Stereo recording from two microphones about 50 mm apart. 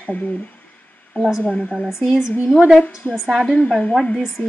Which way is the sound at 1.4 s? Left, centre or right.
Left.